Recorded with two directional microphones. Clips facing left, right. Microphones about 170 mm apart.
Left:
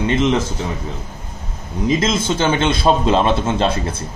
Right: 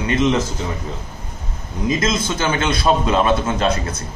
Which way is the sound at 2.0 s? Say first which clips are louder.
Left 2 dB; 25° left (ahead or behind).